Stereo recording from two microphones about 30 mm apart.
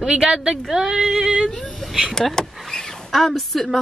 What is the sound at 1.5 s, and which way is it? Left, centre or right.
Speech, centre.